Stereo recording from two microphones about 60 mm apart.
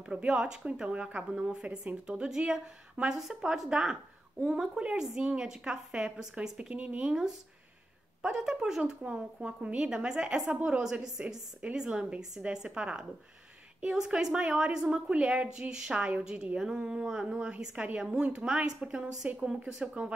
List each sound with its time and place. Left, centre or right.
0.0 s a woman's voice: centre
17.4 s a woman's voice: centre